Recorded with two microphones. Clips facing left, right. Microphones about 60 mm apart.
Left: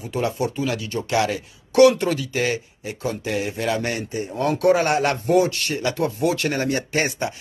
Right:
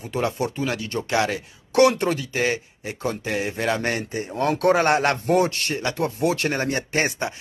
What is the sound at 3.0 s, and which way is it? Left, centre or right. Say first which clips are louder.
Speech: even; right.